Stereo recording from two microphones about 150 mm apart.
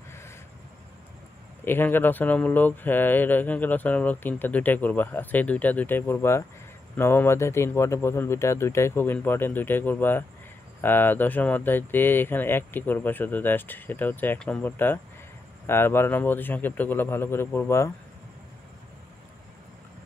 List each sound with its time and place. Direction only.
1.6 s speech: 15° left (ahead or behind)